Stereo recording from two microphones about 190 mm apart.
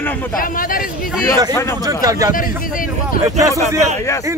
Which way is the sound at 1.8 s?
20° right (ahead or behind).